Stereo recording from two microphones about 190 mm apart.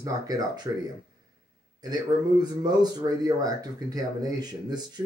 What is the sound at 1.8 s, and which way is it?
Speech, 20° right (ahead or behind).